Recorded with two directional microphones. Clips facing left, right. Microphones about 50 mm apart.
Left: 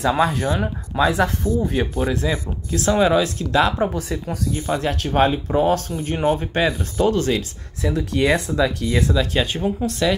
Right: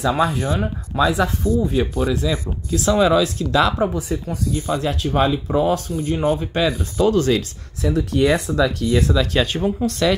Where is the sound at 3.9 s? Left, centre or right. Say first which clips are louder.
Right 1 dB; left.